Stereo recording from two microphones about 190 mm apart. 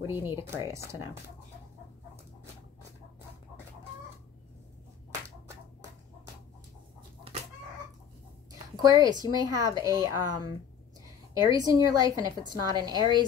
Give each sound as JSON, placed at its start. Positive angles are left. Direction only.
{"t": 0.0, "sound": "speech", "side_deg": -10}
{"t": 8.5, "sound": "a woman's voice", "side_deg": -20}